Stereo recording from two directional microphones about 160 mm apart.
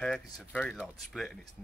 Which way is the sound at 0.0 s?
5° left (ahead or behind).